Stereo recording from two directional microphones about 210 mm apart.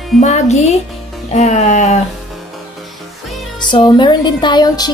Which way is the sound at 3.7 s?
20° left (ahead or behind).